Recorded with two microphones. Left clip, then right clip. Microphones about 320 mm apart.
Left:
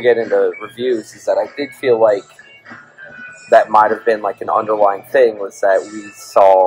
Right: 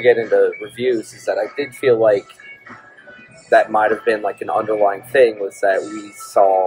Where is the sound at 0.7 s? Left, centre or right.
Centre.